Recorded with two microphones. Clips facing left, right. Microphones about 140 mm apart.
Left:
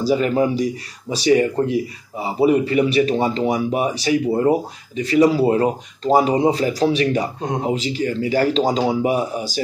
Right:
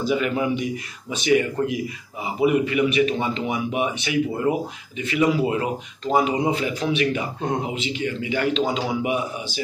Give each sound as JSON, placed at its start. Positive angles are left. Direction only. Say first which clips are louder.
{"t": 0.0, "sound": "speech", "louder": "left 5 dB", "side_deg": 35}